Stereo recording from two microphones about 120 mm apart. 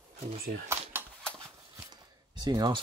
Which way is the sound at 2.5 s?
35° right (ahead or behind).